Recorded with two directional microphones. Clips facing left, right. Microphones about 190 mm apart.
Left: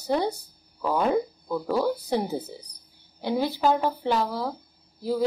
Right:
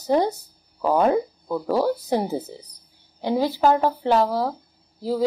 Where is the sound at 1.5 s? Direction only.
40° right (ahead or behind).